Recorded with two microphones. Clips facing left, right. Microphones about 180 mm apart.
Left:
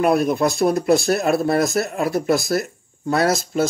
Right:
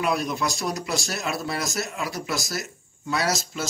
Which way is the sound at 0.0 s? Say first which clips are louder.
Left 8 dB; 55° left (ahead or behind).